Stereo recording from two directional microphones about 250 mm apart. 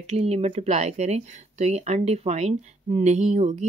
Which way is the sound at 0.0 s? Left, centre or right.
Right.